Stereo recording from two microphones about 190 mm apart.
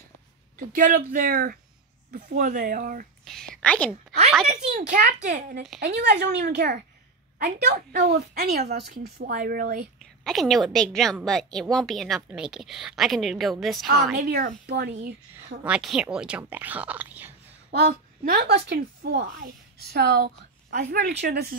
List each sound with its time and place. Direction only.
0.6 s a child's voice: 45° right (ahead or behind)
3.3 s a woman's voice: 5° left (ahead or behind)
4.6 s a child's voice: 40° right (ahead or behind)
10.2 s a woman's voice: centre (ahead or behind)
14.7 s a woman's voice: 60° right (ahead or behind)
15.6 s speech: 5° right (ahead or behind)
17.6 s a woman's voice: 55° right (ahead or behind)